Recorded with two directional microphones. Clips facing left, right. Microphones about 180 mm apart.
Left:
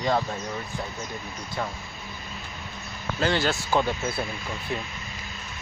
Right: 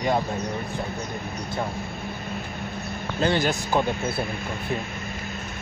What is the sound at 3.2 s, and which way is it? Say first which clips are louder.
Speech: right 2 dB; 15° right (ahead or behind).